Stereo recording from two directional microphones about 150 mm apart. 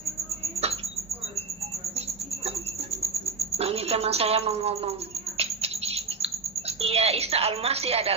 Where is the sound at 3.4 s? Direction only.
45° right (ahead or behind).